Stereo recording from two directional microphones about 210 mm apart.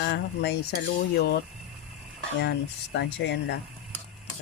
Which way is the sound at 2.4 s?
55° left (ahead or behind).